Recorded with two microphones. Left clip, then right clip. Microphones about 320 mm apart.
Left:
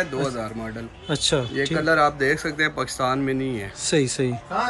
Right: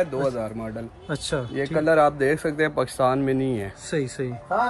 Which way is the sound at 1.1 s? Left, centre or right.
Centre.